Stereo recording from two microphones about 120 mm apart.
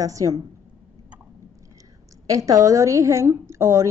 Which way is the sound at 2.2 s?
30° right (ahead or behind).